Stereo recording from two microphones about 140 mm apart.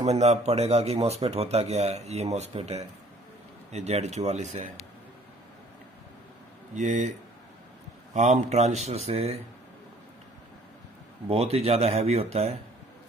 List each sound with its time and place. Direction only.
0.0 s a man's voice: 50° right (ahead or behind)
6.7 s a man's voice: 60° right (ahead or behind)
11.2 s a man's voice: 45° right (ahead or behind)